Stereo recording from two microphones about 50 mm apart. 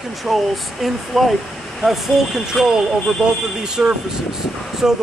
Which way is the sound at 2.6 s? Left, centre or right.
Centre.